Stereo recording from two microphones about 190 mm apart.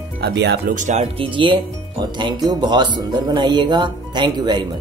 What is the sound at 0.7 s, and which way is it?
Speech, 40° right (ahead or behind).